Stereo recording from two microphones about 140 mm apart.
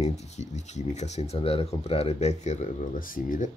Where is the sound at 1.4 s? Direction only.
40° left (ahead or behind).